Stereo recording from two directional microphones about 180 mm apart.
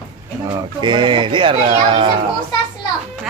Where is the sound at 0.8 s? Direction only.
25° right (ahead or behind).